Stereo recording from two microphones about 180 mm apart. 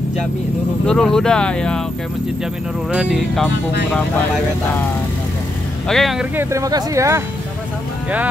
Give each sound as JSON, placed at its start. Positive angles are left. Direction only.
{"t": 0.8, "sound": "speech", "side_deg": 5}
{"t": 2.9, "sound": "speech", "side_deg": -5}
{"t": 5.9, "sound": "speech", "side_deg": 0}
{"t": 6.3, "sound": "speech", "side_deg": -15}